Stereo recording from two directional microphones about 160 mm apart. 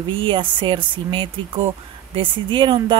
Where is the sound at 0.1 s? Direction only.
30° right (ahead or behind).